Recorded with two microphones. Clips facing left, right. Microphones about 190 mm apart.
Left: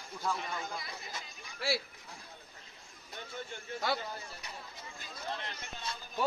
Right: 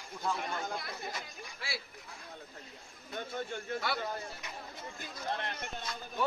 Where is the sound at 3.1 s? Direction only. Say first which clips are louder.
Right 6 dB; 55° right (ahead or behind).